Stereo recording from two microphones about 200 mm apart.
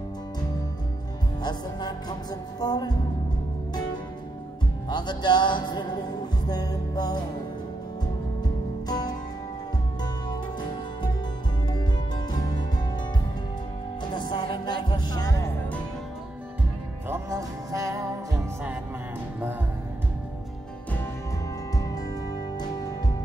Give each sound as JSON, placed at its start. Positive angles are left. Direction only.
{"t": 1.4, "sound": "music", "side_deg": 20}
{"t": 4.8, "sound": "music", "side_deg": 20}
{"t": 8.4, "sound": "music", "side_deg": 20}
{"t": 11.7, "sound": "music", "side_deg": 20}
{"t": 14.1, "sound": "music", "side_deg": 25}
{"t": 17.1, "sound": "music", "side_deg": -15}
{"t": 21.7, "sound": "music", "side_deg": 15}